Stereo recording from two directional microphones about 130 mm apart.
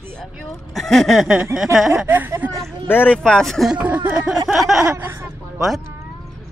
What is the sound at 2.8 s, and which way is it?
Speech, 15° left (ahead or behind).